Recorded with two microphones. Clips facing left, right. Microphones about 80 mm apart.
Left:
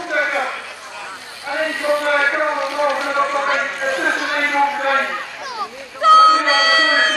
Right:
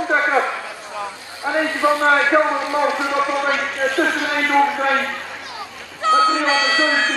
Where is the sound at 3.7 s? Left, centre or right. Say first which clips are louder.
Right 1 dB; centre.